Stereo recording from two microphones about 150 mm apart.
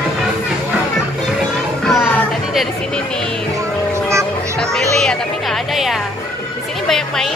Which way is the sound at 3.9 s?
20° right (ahead or behind).